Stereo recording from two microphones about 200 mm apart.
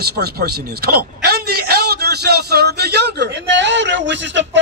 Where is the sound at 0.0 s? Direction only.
50° right (ahead or behind).